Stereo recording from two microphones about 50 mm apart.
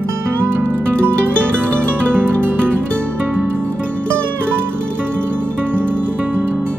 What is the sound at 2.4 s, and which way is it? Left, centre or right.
Music, right.